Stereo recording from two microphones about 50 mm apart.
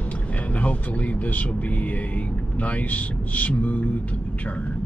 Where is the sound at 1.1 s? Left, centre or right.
Left.